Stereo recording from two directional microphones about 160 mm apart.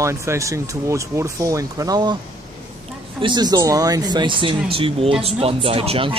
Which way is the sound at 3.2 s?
30° right (ahead or behind).